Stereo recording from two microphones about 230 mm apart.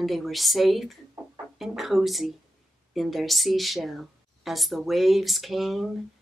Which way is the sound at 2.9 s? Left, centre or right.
Centre.